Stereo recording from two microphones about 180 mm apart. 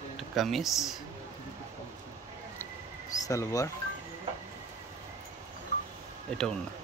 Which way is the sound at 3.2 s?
20° left (ahead or behind).